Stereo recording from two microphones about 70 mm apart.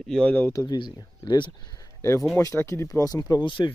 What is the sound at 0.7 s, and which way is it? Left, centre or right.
Speech, left.